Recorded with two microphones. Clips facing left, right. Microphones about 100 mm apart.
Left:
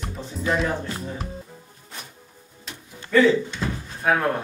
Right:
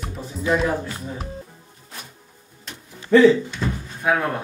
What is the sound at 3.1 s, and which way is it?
Speech, 30° right (ahead or behind).